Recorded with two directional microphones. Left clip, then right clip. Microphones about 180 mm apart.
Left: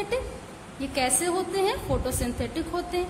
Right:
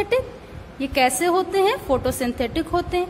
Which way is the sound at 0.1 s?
30° right (ahead or behind).